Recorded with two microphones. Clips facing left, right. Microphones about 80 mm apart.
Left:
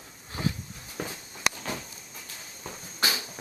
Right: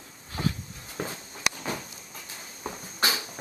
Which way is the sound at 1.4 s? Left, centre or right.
Centre.